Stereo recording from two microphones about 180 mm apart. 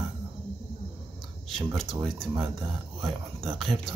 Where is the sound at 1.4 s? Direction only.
Centre (ahead or behind).